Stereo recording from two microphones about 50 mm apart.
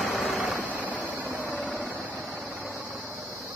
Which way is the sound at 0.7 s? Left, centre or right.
Right.